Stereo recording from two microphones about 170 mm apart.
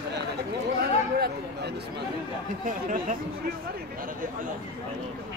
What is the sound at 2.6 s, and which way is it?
Speech, 55° right (ahead or behind).